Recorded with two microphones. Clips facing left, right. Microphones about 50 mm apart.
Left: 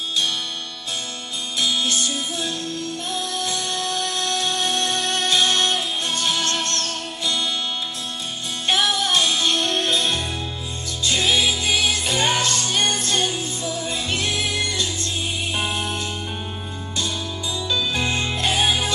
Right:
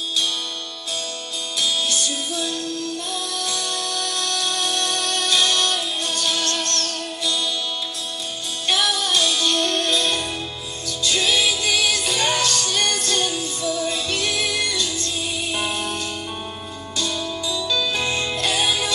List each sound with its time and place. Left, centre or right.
1.6 s music: left
8.6 s music: left
17.0 s music: left